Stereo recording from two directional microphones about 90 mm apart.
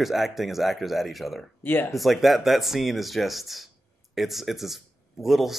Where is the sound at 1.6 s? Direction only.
20° left (ahead or behind).